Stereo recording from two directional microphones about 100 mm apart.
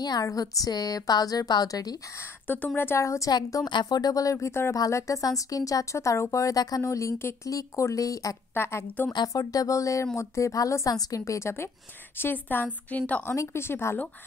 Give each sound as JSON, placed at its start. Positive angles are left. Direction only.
{"t": 0.0, "sound": "a woman's voice", "side_deg": 35}
{"t": 2.4, "sound": "a woman's voice", "side_deg": 20}
{"t": 3.6, "sound": "a woman's voice", "side_deg": 45}
{"t": 8.5, "sound": "a woman's voice", "side_deg": 25}
{"t": 9.1, "sound": "a woman's voice", "side_deg": 40}
{"t": 13.3, "sound": "a woman's voice", "side_deg": 25}